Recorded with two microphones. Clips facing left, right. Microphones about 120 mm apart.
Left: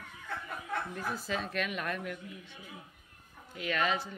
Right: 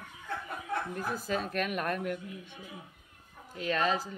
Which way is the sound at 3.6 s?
35° right (ahead or behind).